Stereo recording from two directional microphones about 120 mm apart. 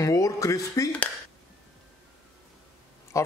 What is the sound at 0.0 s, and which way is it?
Speech, 30° left (ahead or behind).